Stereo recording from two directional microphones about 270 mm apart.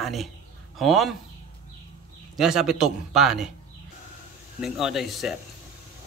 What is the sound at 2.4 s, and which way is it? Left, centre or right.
A man's voice, centre.